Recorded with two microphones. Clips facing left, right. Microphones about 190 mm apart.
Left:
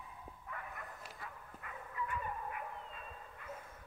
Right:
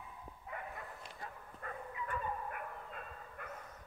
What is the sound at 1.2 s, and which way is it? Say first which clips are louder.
Dog: right 7 dB; 40° right (ahead or behind).